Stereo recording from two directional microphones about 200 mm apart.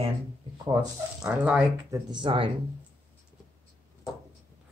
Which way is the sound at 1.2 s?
5° right (ahead or behind).